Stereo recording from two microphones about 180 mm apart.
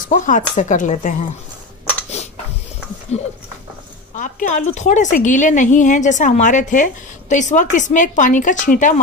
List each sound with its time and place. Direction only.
0.1 s speech: 45° left (ahead or behind)
3.1 s speech: 35° left (ahead or behind)